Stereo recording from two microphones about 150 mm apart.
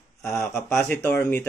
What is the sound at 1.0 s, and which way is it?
Speech, 15° left (ahead or behind).